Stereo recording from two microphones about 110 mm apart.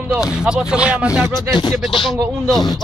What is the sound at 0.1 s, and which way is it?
Speech, 5° right (ahead or behind).